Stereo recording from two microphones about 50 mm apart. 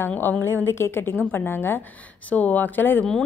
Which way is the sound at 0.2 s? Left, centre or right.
Left.